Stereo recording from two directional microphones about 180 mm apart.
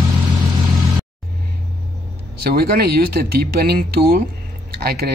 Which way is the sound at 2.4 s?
60° right (ahead or behind).